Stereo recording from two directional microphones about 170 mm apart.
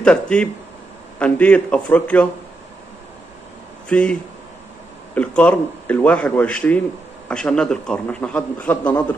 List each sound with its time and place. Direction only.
0.0 s a man's voice: 5° left (ahead or behind)
3.9 s a man's voice: 5° left (ahead or behind)